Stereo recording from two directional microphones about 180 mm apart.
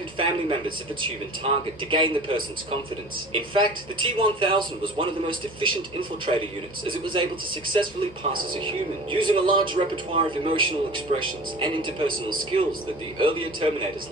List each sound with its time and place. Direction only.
0.2 s speech: 30° right (ahead or behind)
7.7 s speech: 30° right (ahead or behind)